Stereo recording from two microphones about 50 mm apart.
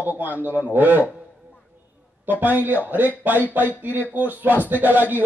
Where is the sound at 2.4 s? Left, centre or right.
Right.